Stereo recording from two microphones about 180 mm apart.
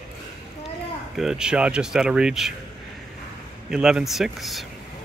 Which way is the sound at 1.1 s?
Centre (ahead or behind).